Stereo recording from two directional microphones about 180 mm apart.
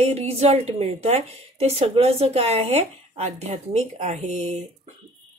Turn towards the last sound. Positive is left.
turn(degrees=-35)  # may be behind; listen again after turning